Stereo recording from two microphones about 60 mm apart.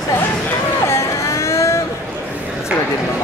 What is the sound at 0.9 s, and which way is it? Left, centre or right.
Vehicle, left.